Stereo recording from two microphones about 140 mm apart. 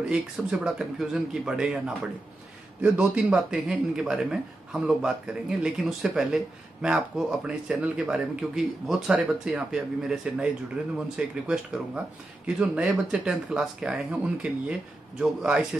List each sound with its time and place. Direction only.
0.1 s a man's voice: 5° right (ahead or behind)